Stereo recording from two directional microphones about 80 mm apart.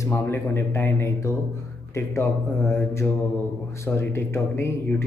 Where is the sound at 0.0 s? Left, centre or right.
Left.